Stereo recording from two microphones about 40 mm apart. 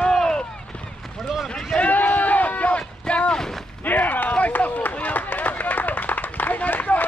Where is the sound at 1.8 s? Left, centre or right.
Left.